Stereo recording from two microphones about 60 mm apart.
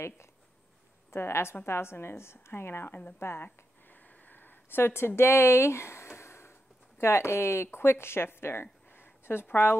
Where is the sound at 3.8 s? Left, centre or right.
Left.